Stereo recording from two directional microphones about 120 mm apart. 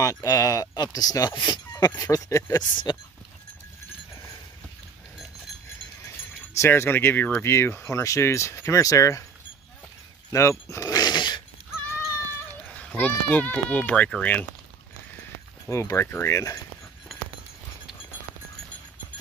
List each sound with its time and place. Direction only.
0.0 s speech: 30° left (ahead or behind)
2.7 s speech: 40° left (ahead or behind)
6.0 s speech: 25° left (ahead or behind)
10.3 s a sound: 25° left (ahead or behind)
12.6 s speech: 15° left (ahead or behind)
15.6 s speech: 25° left (ahead or behind)